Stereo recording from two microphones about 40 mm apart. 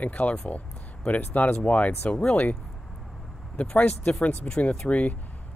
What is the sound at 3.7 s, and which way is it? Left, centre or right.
Speech, left.